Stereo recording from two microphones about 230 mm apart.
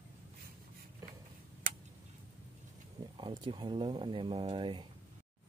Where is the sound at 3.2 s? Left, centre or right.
Right.